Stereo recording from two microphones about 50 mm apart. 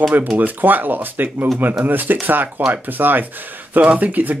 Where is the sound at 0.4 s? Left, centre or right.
Right.